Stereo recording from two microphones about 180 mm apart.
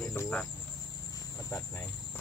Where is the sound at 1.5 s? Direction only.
15° left (ahead or behind).